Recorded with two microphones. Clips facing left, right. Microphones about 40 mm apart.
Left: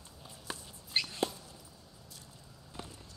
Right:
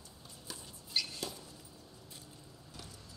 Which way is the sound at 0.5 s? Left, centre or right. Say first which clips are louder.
Left 4 dB; left.